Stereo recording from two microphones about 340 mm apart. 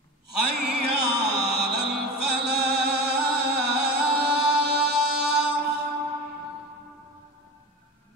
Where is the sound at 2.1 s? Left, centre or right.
Right.